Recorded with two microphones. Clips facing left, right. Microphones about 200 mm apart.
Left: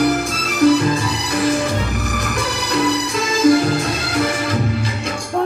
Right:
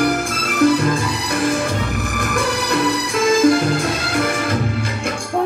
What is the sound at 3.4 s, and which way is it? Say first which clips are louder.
Music: left 3 dB; 50° right (ahead or behind).